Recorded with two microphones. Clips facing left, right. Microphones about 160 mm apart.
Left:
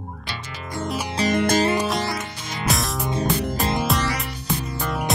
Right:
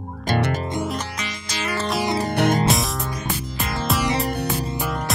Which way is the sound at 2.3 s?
60° right (ahead or behind).